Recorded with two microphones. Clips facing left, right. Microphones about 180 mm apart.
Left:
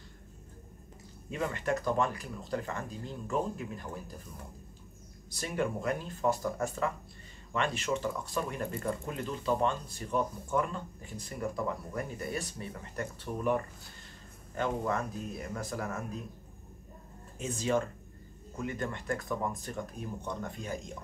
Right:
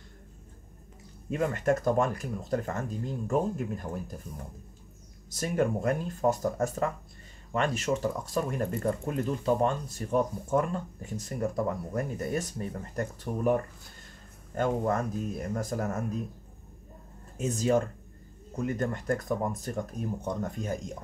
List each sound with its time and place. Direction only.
1.3 s speech: 45° right (ahead or behind)
5.3 s speech: 45° right (ahead or behind)
17.4 s speech: 40° right (ahead or behind)